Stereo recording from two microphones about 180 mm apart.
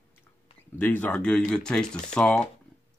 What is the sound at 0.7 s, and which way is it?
Speech, 10° left (ahead or behind).